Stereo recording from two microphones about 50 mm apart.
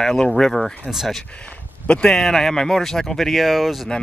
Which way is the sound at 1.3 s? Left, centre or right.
Left.